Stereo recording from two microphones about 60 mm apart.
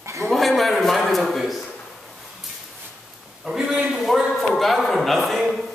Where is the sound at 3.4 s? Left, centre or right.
Centre.